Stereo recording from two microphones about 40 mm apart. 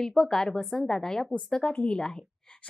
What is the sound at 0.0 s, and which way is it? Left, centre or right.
A woman's voice, centre.